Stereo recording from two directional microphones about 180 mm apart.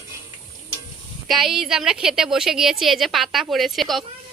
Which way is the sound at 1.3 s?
Centre (ahead or behind).